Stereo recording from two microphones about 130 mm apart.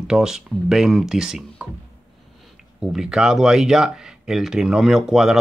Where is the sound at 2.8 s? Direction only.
5° right (ahead or behind).